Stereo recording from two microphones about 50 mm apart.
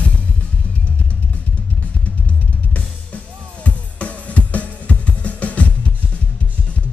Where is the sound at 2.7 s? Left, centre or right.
Left.